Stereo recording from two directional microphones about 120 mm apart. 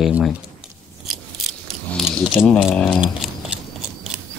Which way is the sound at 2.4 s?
20° left (ahead or behind).